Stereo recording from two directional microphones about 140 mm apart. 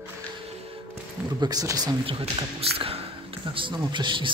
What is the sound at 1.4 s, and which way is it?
Speech, 25° right (ahead or behind).